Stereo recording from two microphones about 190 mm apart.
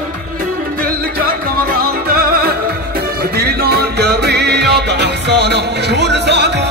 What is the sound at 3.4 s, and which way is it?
Music, 55° right (ahead or behind).